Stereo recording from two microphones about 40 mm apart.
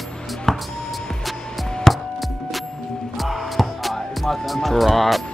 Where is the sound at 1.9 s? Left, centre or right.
Centre.